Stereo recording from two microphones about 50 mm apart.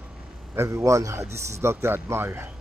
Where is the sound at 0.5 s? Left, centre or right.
Right.